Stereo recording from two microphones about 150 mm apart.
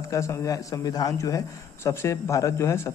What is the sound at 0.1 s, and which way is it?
A man's voice, 20° left (ahead or behind).